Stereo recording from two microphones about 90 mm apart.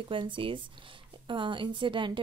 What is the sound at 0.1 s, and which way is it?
Speech, 70° right (ahead or behind).